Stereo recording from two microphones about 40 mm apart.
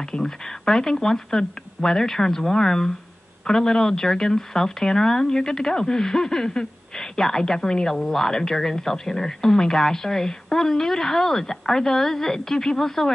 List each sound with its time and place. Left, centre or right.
0.0 s speech: centre